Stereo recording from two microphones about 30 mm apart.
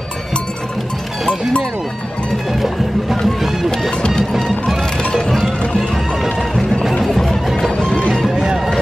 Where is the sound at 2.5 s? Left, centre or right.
Centre.